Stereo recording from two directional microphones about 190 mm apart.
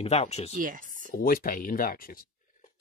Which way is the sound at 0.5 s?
45° right (ahead or behind).